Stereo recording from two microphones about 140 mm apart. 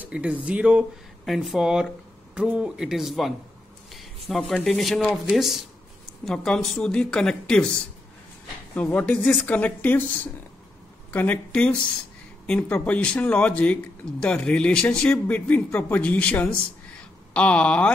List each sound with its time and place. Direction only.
0.0 s speech: 10° right (ahead or behind); by 7.7 s 5° left (ahead or behind)
8.7 s a man's voice: 10° left (ahead or behind)